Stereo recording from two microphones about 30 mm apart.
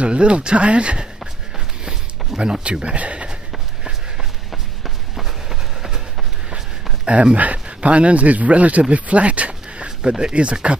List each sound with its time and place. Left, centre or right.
0.0 s speech: right
1.9 s a sound: right
3.0 s speech: right
4.5 s run: centre
7.1 s speech: right
9.8 s a sound: right
10.3 s speech: right